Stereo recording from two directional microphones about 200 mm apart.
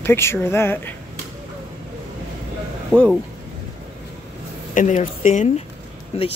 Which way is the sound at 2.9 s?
5° left (ahead or behind).